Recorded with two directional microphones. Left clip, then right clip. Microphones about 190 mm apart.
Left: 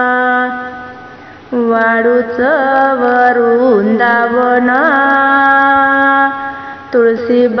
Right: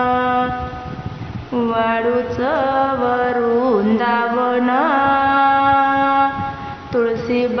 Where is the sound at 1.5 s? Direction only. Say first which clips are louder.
Left 7 dB; 20° left (ahead or behind).